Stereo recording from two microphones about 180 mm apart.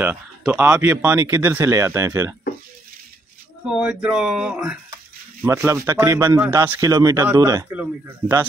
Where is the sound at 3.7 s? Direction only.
5° right (ahead or behind).